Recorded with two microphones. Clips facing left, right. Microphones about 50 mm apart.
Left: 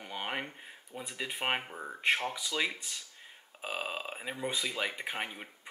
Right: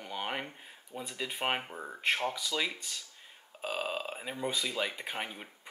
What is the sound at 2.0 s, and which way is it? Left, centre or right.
Speech, centre.